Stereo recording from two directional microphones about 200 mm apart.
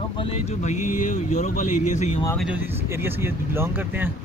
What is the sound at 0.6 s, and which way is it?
Speech, 35° left (ahead or behind).